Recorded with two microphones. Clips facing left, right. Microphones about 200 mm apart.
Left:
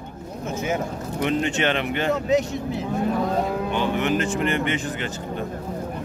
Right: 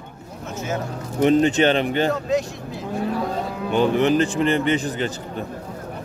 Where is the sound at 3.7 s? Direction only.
35° right (ahead or behind).